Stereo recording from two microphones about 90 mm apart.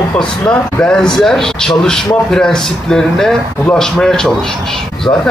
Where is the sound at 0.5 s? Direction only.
10° left (ahead or behind).